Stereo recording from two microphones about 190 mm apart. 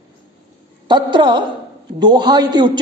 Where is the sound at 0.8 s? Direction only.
25° right (ahead or behind).